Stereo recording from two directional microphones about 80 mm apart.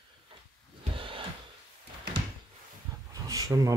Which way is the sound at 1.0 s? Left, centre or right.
Right.